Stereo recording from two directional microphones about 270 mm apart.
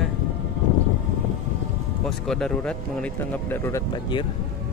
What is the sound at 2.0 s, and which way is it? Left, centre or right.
Speech, centre.